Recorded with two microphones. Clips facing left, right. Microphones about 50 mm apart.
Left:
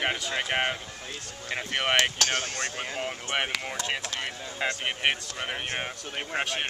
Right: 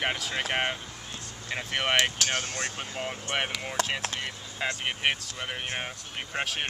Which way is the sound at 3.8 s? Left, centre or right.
Right.